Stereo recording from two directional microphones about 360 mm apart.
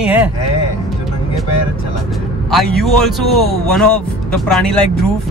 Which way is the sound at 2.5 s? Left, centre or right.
Centre.